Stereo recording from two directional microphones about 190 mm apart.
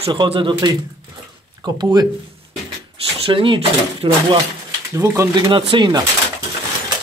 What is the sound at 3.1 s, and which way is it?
Speech, 30° right (ahead or behind).